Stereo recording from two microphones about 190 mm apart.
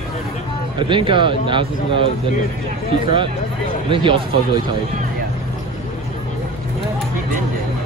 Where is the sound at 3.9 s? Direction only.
25° right (ahead or behind).